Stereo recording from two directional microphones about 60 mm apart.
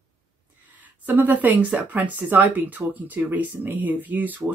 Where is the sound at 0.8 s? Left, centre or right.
Right.